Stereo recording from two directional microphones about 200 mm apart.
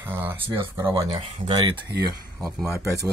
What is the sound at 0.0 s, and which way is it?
Speech, 10° right (ahead or behind).